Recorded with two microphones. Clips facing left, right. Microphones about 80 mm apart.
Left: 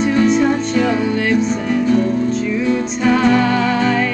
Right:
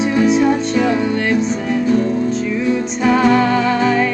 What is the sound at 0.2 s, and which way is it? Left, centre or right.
Music, centre.